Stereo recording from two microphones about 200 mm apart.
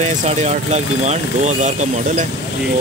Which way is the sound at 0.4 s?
35° right (ahead or behind).